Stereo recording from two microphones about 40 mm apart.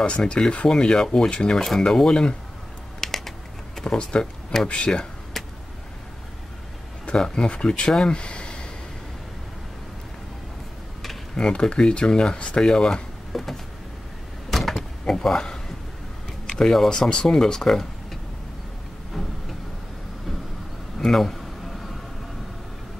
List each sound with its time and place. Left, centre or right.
0.2 s speech: left
1.3 s speech: left
3.0 s typing: centre
4.6 s speech: left
5.4 s vehicle: centre
7.2 s speech: centre
8.1 s a sound: left
11.3 s speech: centre
13.3 s a sound: centre
14.5 s door: centre
16.4 s speech: centre
19.1 s a sound: centre
21.0 s speech: centre